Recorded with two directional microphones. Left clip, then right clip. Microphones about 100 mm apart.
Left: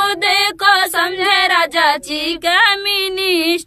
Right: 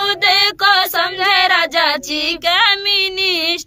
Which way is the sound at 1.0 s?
15° right (ahead or behind).